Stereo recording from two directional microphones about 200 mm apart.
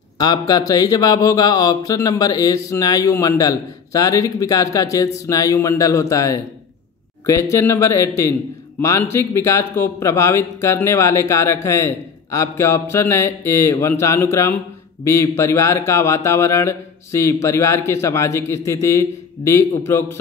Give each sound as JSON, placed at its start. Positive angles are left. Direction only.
{"t": 0.2, "sound": "speech", "side_deg": 20}